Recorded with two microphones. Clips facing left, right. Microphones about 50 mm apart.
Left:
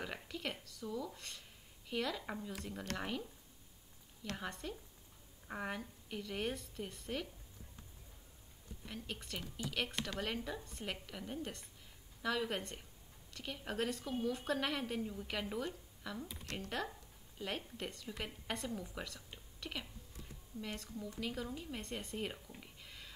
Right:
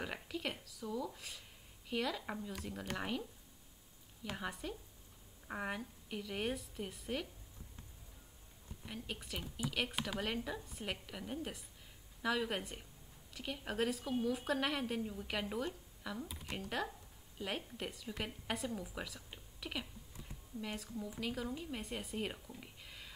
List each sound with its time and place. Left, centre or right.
0.0 s a woman's voice: centre
8.8 s a woman's voice: centre
22.6 s a sound: centre